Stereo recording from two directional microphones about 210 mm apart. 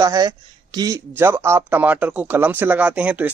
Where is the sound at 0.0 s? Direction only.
20° right (ahead or behind).